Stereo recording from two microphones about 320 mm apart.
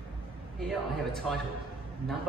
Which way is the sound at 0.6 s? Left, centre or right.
Centre.